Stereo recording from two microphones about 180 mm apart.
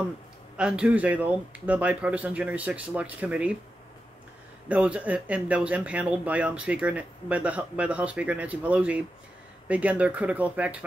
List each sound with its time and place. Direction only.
0.6 s speech: 5° right (ahead or behind)
4.6 s speech: 5° right (ahead or behind)